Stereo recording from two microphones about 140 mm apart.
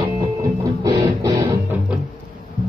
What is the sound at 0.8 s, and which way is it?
Music, 25° right (ahead or behind).